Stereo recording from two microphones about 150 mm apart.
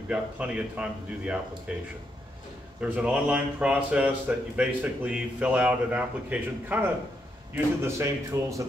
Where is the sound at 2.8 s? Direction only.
5° right (ahead or behind).